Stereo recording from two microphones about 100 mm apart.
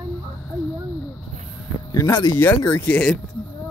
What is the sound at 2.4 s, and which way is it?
Speech, 20° left (ahead or behind).